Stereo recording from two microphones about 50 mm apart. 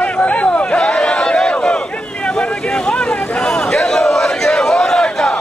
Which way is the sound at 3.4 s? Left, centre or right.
Centre.